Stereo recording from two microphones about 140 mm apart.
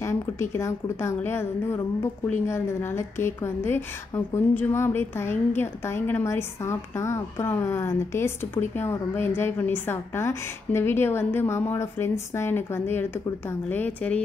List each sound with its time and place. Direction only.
0.0 s a woman's voice: 20° left (ahead or behind)